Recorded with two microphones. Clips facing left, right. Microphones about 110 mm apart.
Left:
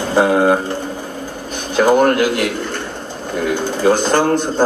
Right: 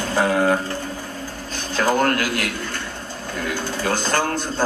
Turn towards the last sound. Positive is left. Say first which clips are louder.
# left 7 dB
turn(degrees=20)  # may be behind; listen again after turning